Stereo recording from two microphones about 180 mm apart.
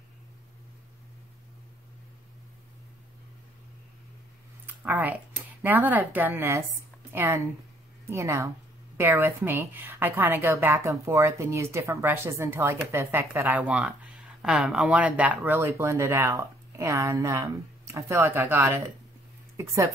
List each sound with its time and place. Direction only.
4.6 s a woman's voice: 10° right (ahead or behind)